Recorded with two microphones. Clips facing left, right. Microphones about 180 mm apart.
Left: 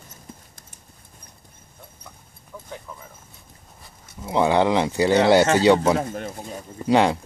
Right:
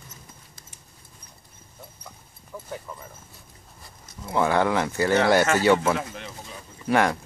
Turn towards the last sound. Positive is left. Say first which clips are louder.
# left 4 dB
turn(degrees=20)  # may be behind; listen again after turning